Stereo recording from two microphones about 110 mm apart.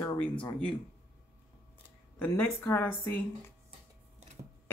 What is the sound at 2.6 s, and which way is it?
Speech, 20° left (ahead or behind).